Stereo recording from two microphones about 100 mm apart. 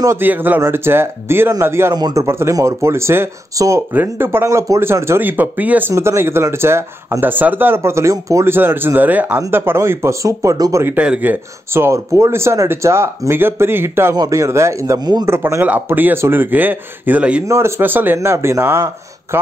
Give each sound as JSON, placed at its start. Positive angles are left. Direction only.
{"t": 0.0, "sound": "speech", "side_deg": -30}
{"t": 2.0, "sound": "speech", "side_deg": -45}
{"t": 2.2, "sound": "speech", "side_deg": -25}
{"t": 11.0, "sound": "speech", "side_deg": -15}
{"t": 14.1, "sound": "speech", "side_deg": -35}
{"t": 17.5, "sound": "speech", "side_deg": -25}